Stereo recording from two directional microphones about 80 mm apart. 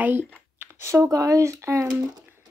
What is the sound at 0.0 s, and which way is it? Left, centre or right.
Speech, right.